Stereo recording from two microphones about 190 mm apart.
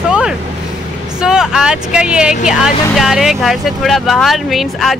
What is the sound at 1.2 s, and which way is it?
Speech, 5° right (ahead or behind).